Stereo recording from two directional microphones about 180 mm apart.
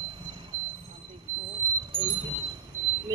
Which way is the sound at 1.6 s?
45° left (ahead or behind).